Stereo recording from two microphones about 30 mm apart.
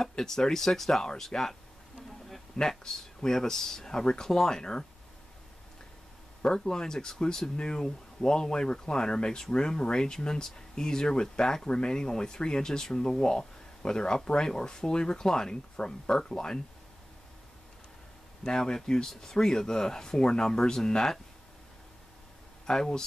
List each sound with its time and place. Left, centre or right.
0.2 s speech: centre
2.6 s speech: centre
6.4 s speech: left
18.4 s speech: left
22.7 s speech: left